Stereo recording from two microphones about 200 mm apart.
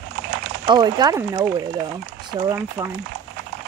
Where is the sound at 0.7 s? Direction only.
20° right (ahead or behind).